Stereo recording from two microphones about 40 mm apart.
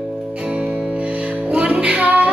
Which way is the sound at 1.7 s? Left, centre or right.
Right.